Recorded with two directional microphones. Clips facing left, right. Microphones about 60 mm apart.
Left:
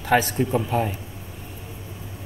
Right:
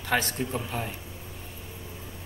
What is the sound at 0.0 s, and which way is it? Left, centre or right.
Speech, centre.